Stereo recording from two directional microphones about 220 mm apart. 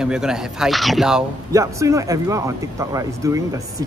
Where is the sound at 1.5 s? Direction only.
15° right (ahead or behind).